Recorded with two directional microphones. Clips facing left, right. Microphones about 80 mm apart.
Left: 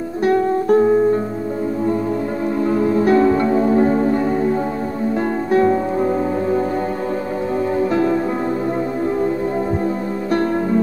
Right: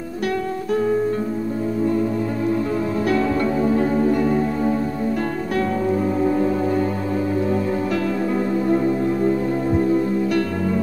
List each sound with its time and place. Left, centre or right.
0.2 s music: left
3.1 s music: left
5.5 s music: left
7.9 s music: left